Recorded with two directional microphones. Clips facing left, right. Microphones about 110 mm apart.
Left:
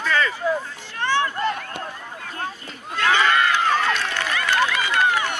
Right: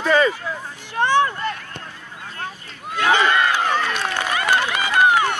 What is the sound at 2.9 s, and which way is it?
Crowd, 20° right (ahead or behind).